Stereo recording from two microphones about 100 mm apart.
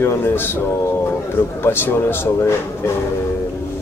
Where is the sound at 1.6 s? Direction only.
20° left (ahead or behind).